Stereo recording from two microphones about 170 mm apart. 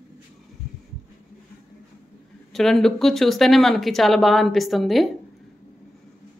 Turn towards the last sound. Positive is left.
turn(degrees=0)  # may be behind; listen again after turning